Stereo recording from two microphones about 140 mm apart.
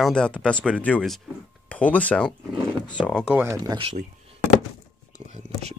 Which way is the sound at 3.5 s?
25° right (ahead or behind).